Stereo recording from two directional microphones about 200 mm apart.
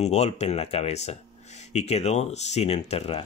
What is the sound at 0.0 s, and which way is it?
Speech, 35° left (ahead or behind).